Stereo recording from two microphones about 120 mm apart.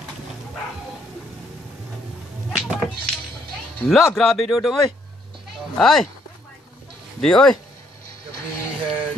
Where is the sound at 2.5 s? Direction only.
5° right (ahead or behind).